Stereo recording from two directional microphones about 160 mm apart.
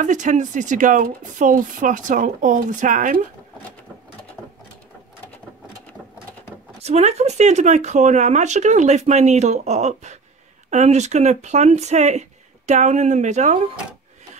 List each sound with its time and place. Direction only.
0.0 s speech: 50° right (ahead or behind)
6.8 s speech: 45° right (ahead or behind)